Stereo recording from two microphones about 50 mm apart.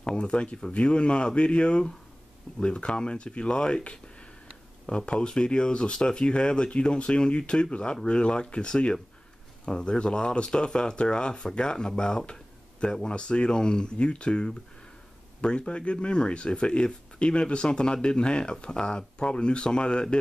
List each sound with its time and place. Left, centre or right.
0.0 s speech: centre